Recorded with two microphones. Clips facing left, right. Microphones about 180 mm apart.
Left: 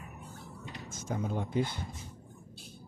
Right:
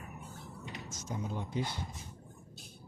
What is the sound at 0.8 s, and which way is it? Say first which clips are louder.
Speech: left 5 dB; 55° left (ahead or behind).